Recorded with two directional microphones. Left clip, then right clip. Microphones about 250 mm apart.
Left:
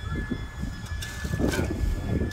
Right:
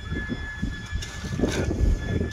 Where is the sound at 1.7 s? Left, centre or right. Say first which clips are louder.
Right 4 dB; centre.